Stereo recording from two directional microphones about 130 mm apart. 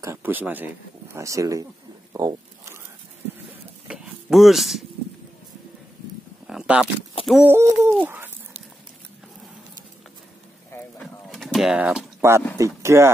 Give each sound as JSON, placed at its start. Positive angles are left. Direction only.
{"t": 0.0, "sound": "bird", "side_deg": -15}
{"t": 1.1, "sound": "speech", "side_deg": -25}
{"t": 2.1, "sound": "zipper", "side_deg": -25}
{"t": 3.8, "sound": "a sound", "side_deg": -5}
{"t": 6.4, "sound": "a sound", "side_deg": -5}
{"t": 7.4, "sound": "bird", "side_deg": -20}
{"t": 11.0, "sound": "pigeon", "side_deg": 0}
{"t": 12.2, "sound": "speech", "side_deg": -20}